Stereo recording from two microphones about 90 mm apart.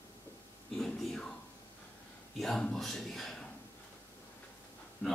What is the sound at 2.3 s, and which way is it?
A man's voice, 5° left (ahead or behind).